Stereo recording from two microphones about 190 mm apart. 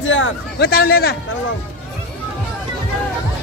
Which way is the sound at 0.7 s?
55° left (ahead or behind).